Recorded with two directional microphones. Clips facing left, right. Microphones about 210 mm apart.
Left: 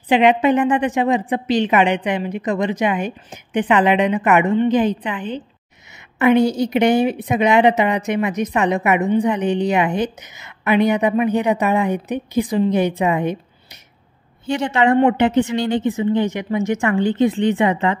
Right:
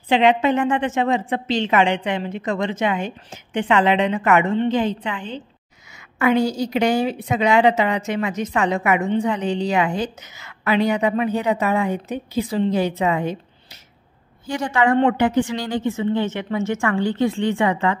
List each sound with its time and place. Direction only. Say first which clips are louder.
0.1 s a woman's voice: left 2 dB; 15° left (ahead or behind)
14.4 s a woman's voice: left 3 dB; 25° left (ahead or behind)